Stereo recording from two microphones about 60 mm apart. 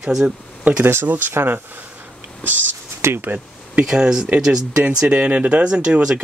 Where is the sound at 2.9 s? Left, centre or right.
Right.